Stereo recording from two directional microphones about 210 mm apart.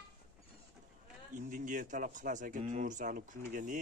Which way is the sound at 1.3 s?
40° right (ahead or behind).